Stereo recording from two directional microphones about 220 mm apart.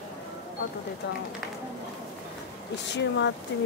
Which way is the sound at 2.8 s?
50° left (ahead or behind).